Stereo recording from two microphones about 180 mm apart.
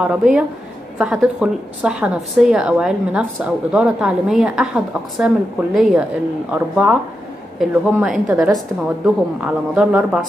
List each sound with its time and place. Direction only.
0.0 s a woman's voice: 5° right (ahead or behind)